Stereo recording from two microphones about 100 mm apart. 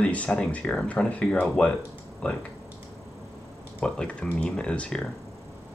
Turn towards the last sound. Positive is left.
turn(degrees=10)  # may be behind; listen again after turning